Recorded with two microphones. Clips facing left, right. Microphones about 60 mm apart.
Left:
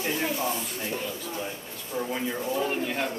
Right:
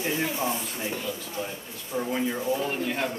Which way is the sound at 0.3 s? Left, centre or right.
Right.